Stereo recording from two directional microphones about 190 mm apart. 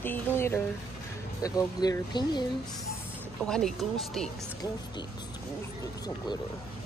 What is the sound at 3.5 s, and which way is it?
Speech, 5° left (ahead or behind).